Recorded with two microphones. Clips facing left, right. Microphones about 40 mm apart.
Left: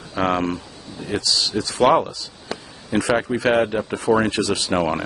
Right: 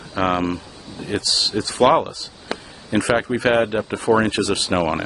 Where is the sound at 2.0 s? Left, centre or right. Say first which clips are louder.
Right 2 dB; right.